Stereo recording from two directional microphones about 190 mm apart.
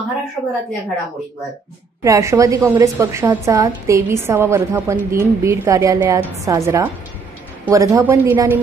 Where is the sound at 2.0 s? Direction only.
15° right (ahead or behind).